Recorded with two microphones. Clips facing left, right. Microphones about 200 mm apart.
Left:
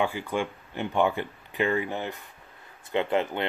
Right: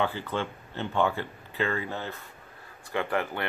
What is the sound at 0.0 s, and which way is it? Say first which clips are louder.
Speech: left 2 dB; 15° left (ahead or behind).